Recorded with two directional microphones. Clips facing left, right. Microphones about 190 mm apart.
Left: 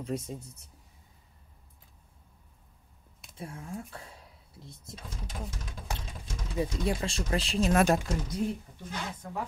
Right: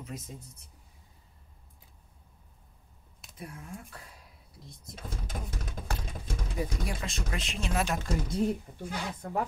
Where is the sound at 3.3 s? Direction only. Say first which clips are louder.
Left 4 dB; 30° left (ahead or behind).